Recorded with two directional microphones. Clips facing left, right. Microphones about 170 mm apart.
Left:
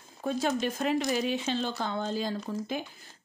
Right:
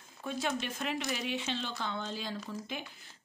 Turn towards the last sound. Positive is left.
turn(degrees=40)  # may be behind; listen again after turning